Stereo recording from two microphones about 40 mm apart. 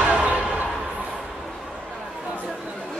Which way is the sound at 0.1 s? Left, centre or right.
Right.